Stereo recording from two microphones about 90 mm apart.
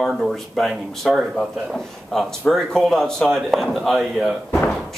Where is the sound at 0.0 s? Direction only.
Centre (ahead or behind).